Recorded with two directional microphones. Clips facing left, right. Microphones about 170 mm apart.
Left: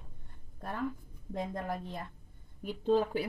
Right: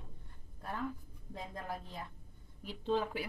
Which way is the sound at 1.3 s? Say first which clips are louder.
Left 7 dB; 65° left (ahead or behind).